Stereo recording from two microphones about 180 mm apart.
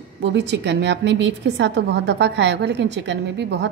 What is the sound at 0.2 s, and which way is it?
A woman's voice, 75° right (ahead or behind).